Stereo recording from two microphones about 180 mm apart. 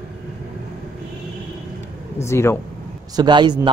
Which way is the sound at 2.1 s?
15° left (ahead or behind).